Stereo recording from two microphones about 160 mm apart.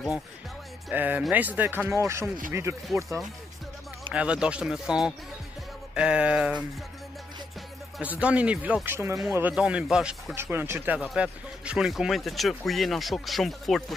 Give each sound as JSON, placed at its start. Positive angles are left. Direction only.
{"t": 0.8, "sound": "speech", "side_deg": -10}
{"t": 4.1, "sound": "speech", "side_deg": -5}
{"t": 8.0, "sound": "speech", "side_deg": -10}
{"t": 10.3, "sound": "speech", "side_deg": -15}